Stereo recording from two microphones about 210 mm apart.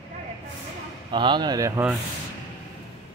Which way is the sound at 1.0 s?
20° right (ahead or behind).